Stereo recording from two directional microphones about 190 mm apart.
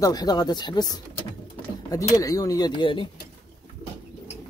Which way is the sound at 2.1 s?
15° left (ahead or behind).